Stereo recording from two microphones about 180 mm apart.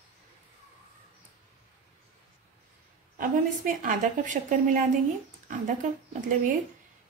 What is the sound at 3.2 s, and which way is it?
A woman's voice, 50° right (ahead or behind).